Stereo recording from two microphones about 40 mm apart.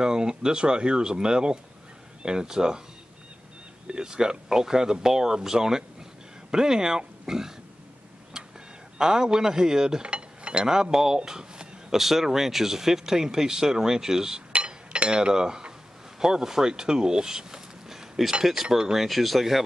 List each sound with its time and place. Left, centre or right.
0.0 s speech: centre
3.9 s speech: centre
8.9 s speech: centre
14.5 s a sound: right
16.2 s speech: centre
19.0 s speech: centre